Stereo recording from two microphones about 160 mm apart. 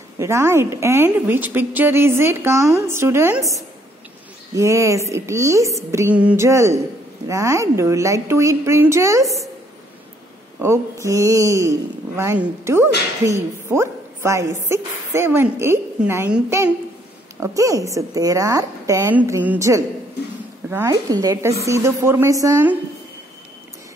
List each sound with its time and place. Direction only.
0.2 s a woman's voice: 15° right (ahead or behind)
4.6 s speech: 20° right (ahead or behind)
10.6 s a woman's voice: 20° right (ahead or behind)